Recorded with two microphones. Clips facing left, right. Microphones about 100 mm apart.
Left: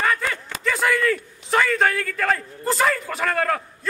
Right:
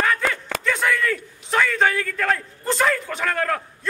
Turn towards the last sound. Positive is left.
turn(degrees=0)  # may be behind; listen again after turning